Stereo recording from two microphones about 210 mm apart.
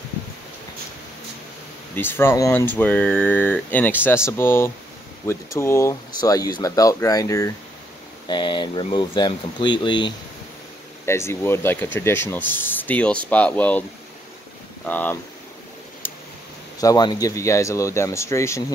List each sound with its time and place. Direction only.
2.0 s speech: 10° left (ahead or behind)
14.9 s speech: 10° left (ahead or behind)
16.0 s a sound: 10° left (ahead or behind)
16.8 s speech: 20° left (ahead or behind)